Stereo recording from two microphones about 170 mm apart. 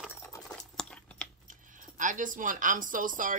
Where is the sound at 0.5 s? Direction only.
5° left (ahead or behind).